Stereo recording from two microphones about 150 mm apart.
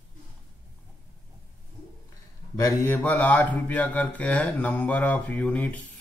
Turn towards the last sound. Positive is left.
turn(degrees=10)  # may be behind; listen again after turning